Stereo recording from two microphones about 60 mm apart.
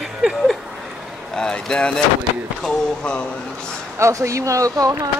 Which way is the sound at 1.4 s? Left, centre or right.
Centre.